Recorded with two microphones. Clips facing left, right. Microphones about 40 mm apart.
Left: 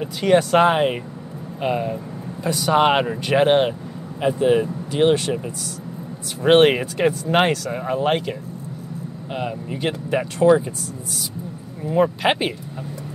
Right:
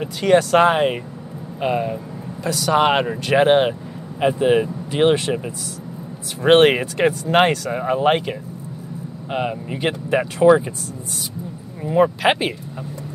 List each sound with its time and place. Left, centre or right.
0.2 s speech: centre
2.4 s speech: centre
4.2 s speech: right
11.8 s speech: centre